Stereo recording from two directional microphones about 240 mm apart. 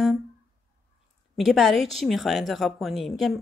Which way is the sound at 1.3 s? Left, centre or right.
Centre.